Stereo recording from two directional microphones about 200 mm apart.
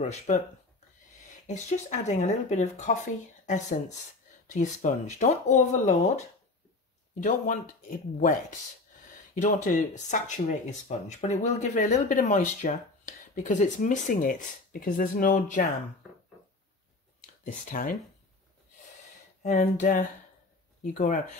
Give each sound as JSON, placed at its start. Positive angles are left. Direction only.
{"t": 0.0, "sound": "speech", "side_deg": 35}
{"t": 1.5, "sound": "speech", "side_deg": 35}
{"t": 7.2, "sound": "speech", "side_deg": 40}
{"t": 17.5, "sound": "speech", "side_deg": 45}
{"t": 19.4, "sound": "speech", "side_deg": 35}